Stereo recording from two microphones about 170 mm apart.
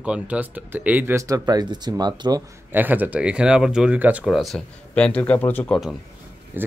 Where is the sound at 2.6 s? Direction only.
10° right (ahead or behind); by 5.9 s 5° left (ahead or behind).